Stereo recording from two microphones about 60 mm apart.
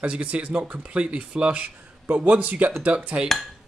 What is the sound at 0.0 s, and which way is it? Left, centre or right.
Speech, right.